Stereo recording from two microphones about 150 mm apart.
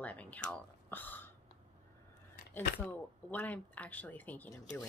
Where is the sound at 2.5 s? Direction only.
10° left (ahead or behind).